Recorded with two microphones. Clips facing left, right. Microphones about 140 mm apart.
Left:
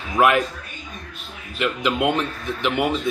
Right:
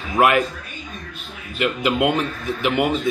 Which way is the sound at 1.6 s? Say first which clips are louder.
Right 2 dB; 5° right (ahead or behind).